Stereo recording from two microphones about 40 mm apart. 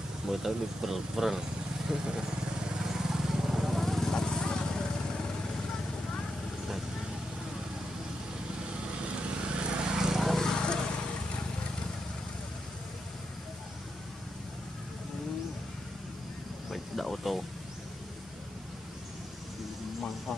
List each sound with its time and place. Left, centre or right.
0.3 s speech: centre
1.9 s vehicle: centre
4.1 s vehicle: centre
9.0 s vehicle: right
10.2 s vehicle: centre
16.7 s vehicle: centre